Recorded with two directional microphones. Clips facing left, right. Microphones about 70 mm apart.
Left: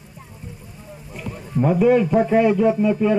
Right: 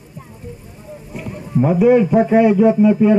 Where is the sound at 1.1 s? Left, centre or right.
Centre.